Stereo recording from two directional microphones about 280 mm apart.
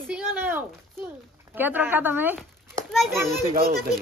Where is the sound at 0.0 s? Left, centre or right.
Centre.